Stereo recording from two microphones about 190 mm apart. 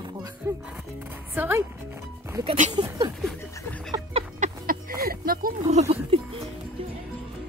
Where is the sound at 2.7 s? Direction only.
25° right (ahead or behind).